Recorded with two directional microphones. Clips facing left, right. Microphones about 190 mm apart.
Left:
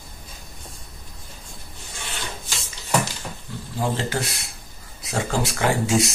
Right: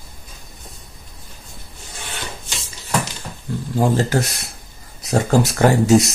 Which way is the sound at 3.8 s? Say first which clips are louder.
Right 7 dB; 45° right (ahead or behind).